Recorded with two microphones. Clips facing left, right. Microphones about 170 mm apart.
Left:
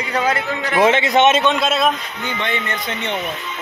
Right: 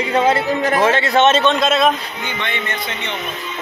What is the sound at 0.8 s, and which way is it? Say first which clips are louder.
A man's voice: left 3 dB; 20° left (ahead or behind).